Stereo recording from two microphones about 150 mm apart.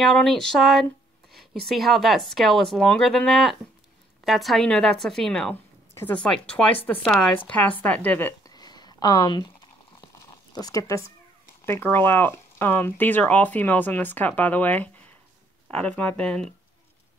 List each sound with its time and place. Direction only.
0.0 s speech: centre (ahead or behind)
8.5 s a sound: 25° left (ahead or behind)
10.2 s zipper: 25° left (ahead or behind)
11.6 s speech: 15° left (ahead or behind)